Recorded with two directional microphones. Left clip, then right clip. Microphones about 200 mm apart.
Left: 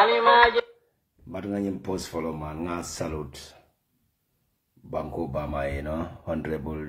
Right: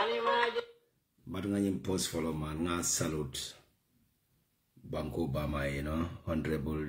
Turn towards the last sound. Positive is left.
turn(degrees=-10)  # may be behind; listen again after turning